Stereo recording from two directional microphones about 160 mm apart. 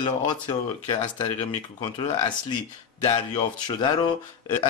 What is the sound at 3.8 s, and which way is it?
Speech, 30° left (ahead or behind).